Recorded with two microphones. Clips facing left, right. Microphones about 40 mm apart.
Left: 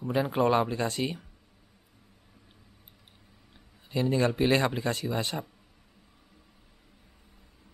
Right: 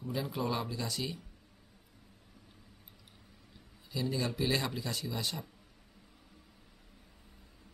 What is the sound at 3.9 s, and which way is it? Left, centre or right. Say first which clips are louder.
Speech: left 8 dB; left.